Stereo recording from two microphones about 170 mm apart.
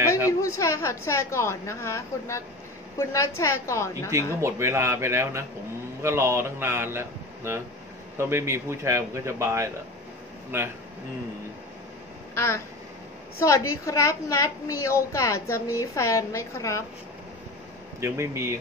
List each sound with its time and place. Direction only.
0.4 s a woman's voice: 15° left (ahead or behind)
4.4 s speech: 15° right (ahead or behind)
12.4 s a woman's voice: 15° left (ahead or behind)
18.0 s speech: 15° right (ahead or behind)